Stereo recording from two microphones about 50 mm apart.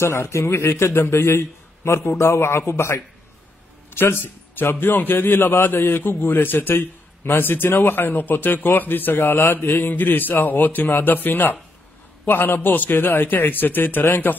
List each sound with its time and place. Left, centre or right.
0.0 s a man's voice: left
3.9 s a man's voice: left